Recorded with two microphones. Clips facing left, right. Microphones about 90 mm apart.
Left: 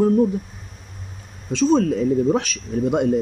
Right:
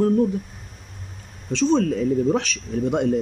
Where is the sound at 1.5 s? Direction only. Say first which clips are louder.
Left 2 dB; 15° left (ahead or behind).